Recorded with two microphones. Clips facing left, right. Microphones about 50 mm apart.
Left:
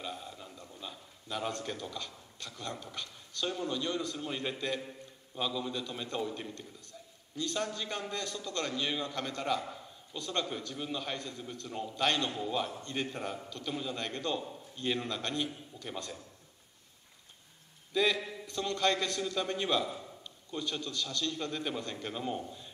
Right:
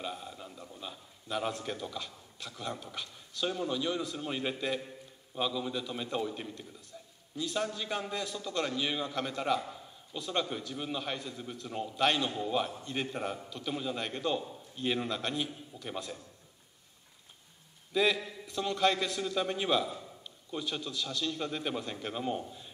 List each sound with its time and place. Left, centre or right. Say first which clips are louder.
0.0 s a man's voice: right 2 dB; centre
17.9 s a man's voice: right 1 dB; centre